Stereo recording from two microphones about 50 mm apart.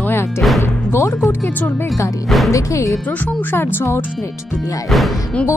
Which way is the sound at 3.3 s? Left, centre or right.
Left.